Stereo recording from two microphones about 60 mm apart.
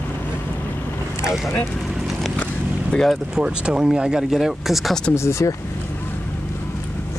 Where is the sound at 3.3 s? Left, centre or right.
Centre.